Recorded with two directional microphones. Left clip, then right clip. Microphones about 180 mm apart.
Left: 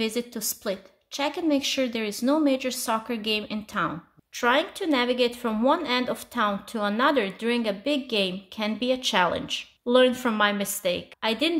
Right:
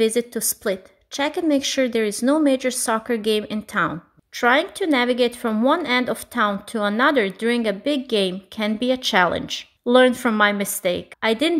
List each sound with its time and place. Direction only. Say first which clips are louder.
0.0 s a woman's voice: right 8 dB; 35° right (ahead or behind)